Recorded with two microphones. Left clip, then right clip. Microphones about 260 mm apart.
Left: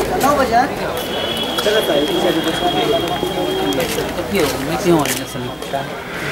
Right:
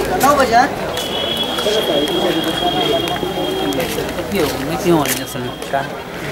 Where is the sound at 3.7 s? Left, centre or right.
Centre.